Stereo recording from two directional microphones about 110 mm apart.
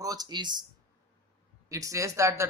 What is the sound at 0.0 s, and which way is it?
Speech, 35° right (ahead or behind).